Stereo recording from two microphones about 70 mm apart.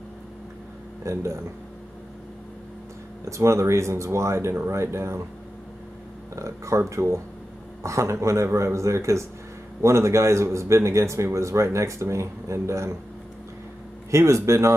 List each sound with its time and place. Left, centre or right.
1.0 s speech: right
3.3 s speech: right
6.3 s speech: right
14.1 s speech: right